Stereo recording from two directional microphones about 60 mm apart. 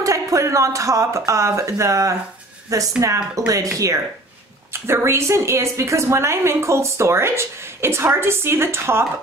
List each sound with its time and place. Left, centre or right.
0.0 s speech: right
4.8 s a woman's voice: right